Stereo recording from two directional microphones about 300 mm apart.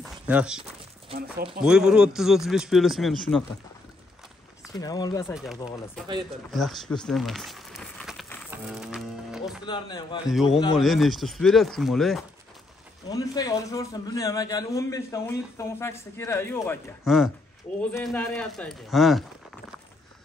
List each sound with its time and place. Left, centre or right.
0.3 s a man's voice: centre
1.0 s a sound: centre
1.6 s a man's voice: centre
4.7 s a man's voice: centre
5.3 s a man's voice: centre
6.5 s crumpling: centre
8.5 s music: centre
9.7 s a man's voice: centre
10.2 s a man's voice: centre
13.1 s a man's voice: centre